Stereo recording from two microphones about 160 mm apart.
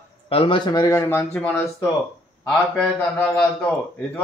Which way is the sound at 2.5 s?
5° left (ahead or behind).